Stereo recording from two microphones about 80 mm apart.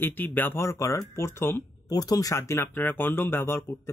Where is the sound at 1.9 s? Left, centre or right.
Left.